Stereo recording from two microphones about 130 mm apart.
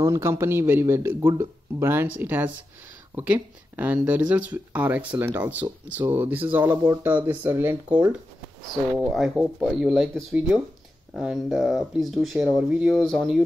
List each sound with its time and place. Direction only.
0.0 s speech: 20° right (ahead or behind); by 13.4 s centre (ahead or behind)